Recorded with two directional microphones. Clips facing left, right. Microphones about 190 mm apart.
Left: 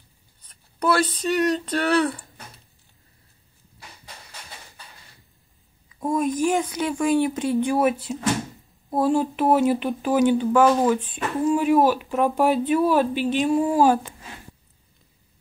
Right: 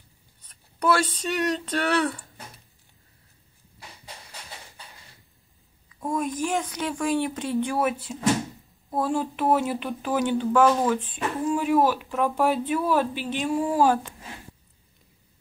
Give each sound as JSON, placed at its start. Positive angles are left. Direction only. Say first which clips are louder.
{"t": 0.7, "sound": "speech", "louder": "left 2 dB", "side_deg": 0}
{"t": 5.9, "sound": "speech", "louder": "left 5 dB", "side_deg": 20}